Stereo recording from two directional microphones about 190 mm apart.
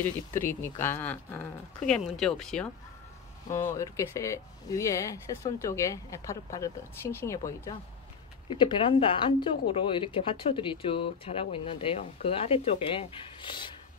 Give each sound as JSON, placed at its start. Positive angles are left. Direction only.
{"t": 0.3, "sound": "speech", "side_deg": 10}
{"t": 3.4, "sound": "speech", "side_deg": 15}